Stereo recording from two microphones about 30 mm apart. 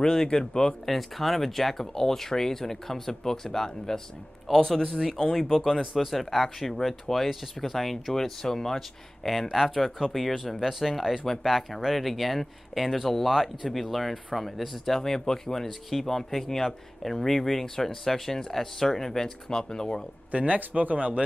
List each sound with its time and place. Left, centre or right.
0.0 s speech: left
0.8 s speech: centre
4.5 s speech: centre
5.3 s speech: centre
5.7 s speech: centre
8.1 s speech: centre
14.9 s speech: centre
19.5 s speech: left
20.2 s speech: right